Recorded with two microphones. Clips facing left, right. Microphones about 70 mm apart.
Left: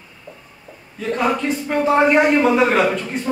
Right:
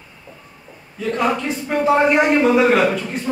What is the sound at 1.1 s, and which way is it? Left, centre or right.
A man's voice, centre.